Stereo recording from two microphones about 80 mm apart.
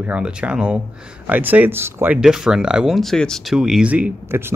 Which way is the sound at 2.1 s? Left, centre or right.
Centre.